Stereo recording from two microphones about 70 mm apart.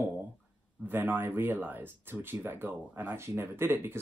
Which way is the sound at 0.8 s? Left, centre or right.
Right.